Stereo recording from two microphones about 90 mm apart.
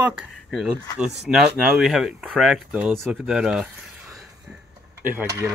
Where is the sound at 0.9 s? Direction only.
5° right (ahead or behind).